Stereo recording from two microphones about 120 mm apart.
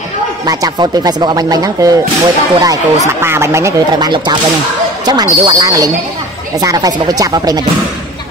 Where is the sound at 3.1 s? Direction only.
20° right (ahead or behind).